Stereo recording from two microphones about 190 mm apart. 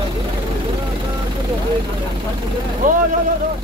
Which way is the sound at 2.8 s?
45° right (ahead or behind).